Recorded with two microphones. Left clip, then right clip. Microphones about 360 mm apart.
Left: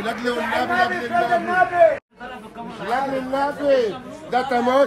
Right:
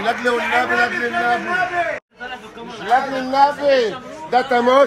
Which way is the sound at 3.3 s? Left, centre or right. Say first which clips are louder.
Right 6 dB; right.